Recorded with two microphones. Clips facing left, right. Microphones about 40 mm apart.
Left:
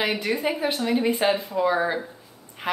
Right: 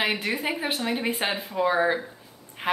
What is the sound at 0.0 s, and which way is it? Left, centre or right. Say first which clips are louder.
A woman's voice: left 2 dB; right.